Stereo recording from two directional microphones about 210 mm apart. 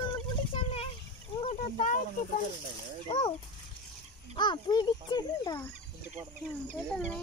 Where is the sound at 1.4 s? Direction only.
35° left (ahead or behind).